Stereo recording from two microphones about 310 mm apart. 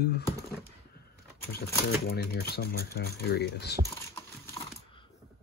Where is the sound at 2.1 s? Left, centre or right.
Left.